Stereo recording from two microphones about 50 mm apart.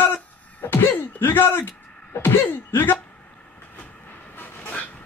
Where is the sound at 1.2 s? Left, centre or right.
Left.